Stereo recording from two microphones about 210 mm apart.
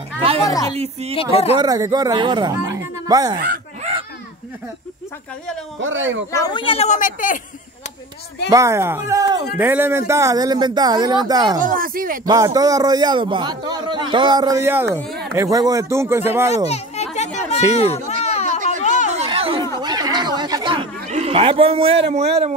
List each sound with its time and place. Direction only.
0.5 s a woman's voice: 15° left (ahead or behind)
1.1 s speech: 30° left (ahead or behind)
1.6 s speech: 20° right (ahead or behind)
3.4 s a sound: 45° right (ahead or behind)
5.8 s speech: 65° right (ahead or behind)
6.3 s speech: 20° left (ahead or behind); by 7.3 s 40° left (ahead or behind)
8.5 s speech: 15° right (ahead or behind)
11.6 s speech: 40° right (ahead or behind)
12.3 s a man's voice: 15° right (ahead or behind)
16.6 s children playing: 30° left (ahead or behind)
18.0 s a sound: 30° left (ahead or behind)
19.1 s chatter: 25° right (ahead or behind)
19.8 s snicker: 20° right (ahead or behind)
21.1 s a man's voice: 30° right (ahead or behind)